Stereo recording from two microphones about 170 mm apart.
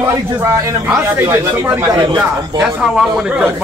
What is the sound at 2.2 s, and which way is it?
A man's voice, 5° right (ahead or behind).